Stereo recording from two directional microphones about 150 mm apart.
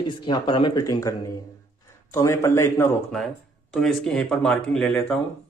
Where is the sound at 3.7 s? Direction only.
5° left (ahead or behind).